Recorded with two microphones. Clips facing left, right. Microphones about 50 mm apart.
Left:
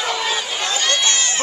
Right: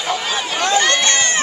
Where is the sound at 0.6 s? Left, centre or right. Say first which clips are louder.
Right 5 dB; right.